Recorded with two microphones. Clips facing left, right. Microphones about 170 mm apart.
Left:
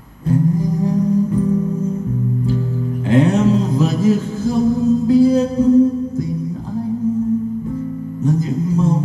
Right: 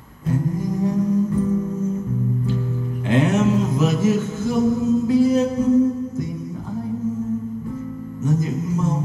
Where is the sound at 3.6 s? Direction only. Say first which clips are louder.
Left 2 dB; 25° right (ahead or behind).